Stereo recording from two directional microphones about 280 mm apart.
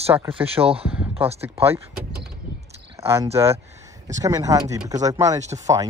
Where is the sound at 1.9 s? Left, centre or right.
Right.